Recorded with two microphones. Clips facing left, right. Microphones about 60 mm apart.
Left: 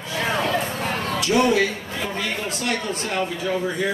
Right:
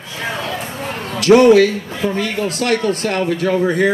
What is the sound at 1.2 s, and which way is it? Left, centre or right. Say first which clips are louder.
Speech: right 11 dB; right.